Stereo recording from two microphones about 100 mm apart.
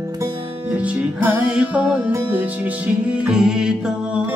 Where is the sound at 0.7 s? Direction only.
15° right (ahead or behind).